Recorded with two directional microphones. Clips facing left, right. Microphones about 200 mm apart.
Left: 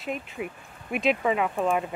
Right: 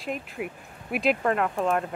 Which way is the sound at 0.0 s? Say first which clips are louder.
Even; centre (ahead or behind).